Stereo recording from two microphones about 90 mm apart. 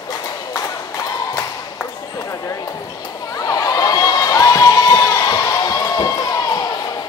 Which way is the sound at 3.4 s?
40° left (ahead or behind).